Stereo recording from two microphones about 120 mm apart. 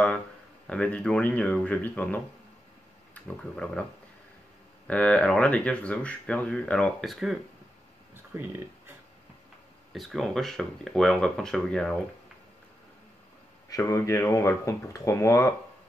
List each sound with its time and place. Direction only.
0.7 s speech: 10° left (ahead or behind)
3.5 s speech: 10° left (ahead or behind)
4.8 s speech: 10° left (ahead or behind)
8.1 s a sound: 20° right (ahead or behind)
9.9 s speech: centre (ahead or behind)
13.7 s speech: 25° left (ahead or behind)